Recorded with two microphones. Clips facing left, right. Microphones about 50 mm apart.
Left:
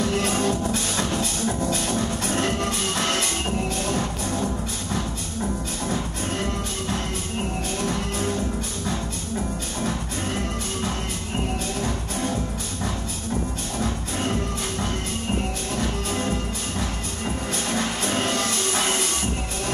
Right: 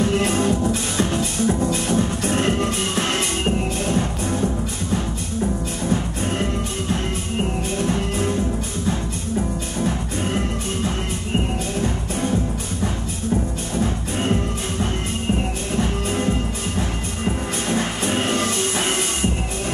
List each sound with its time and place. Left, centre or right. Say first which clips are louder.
0.0 s music: right 3 dB; right
7.8 s music: right 4 dB; right
9.8 s music: right 4 dB; right
15.7 s music: right 5 dB; right
17.6 s music: right 4 dB; right